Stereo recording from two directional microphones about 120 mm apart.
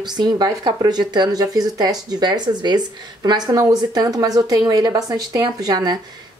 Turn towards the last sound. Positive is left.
turn(degrees=-35)  # may be behind; listen again after turning